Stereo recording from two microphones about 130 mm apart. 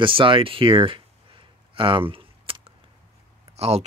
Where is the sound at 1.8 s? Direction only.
40° right (ahead or behind).